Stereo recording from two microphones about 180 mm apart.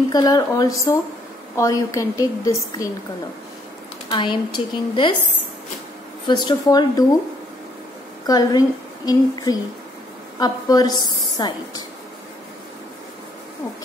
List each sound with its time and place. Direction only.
0.1 s a woman's voice: 20° left (ahead or behind)
4.1 s a woman's voice: 25° left (ahead or behind)
6.2 s a woman's voice: 25° left (ahead or behind)
8.3 s a woman's voice: 20° left (ahead or behind)